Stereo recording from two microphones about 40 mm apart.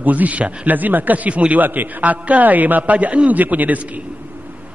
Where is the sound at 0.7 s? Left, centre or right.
Right.